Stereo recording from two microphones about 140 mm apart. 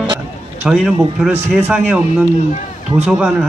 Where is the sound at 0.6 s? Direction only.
5° right (ahead or behind).